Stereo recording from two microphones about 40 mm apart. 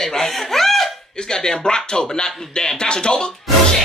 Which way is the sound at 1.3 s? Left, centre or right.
Centre.